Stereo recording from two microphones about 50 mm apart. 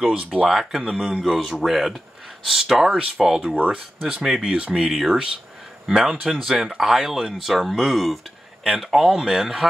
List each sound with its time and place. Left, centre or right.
0.5 s speech: centre
3.5 s speech: right
4.2 s speech: centre
4.5 s speech: centre
4.8 s speech: centre